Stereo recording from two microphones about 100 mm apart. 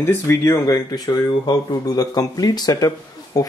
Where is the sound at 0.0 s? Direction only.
25° left (ahead or behind).